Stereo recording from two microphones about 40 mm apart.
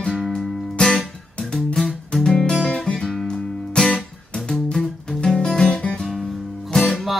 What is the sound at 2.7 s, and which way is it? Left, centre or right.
Guitar, left.